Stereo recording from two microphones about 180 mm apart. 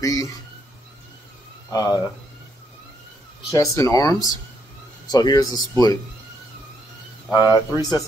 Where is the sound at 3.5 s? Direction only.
20° left (ahead or behind).